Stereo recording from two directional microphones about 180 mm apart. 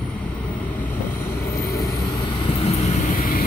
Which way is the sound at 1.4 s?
15° left (ahead or behind).